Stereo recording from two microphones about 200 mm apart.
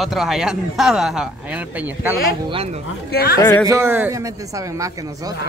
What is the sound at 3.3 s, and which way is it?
Speech, 15° left (ahead or behind).